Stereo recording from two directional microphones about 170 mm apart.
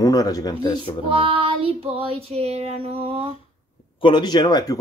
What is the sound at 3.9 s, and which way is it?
Speech, 30° left (ahead or behind).